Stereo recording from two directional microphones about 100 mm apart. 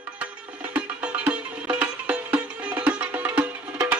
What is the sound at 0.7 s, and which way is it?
Music, 10° right (ahead or behind).